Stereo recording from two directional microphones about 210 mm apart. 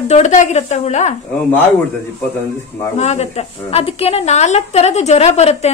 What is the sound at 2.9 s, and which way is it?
Speech, 30° left (ahead or behind).